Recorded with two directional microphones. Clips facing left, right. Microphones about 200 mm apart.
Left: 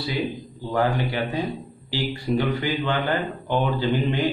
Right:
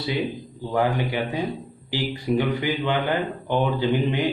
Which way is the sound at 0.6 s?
15° right (ahead or behind).